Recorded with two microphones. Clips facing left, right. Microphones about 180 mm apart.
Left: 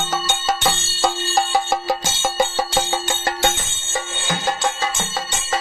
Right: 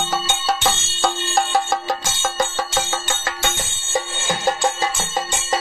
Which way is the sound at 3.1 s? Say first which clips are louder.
Left 4 dB; 40° left (ahead or behind).